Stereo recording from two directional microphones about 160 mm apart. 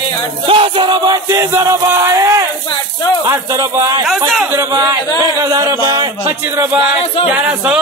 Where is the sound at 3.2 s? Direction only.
20° right (ahead or behind).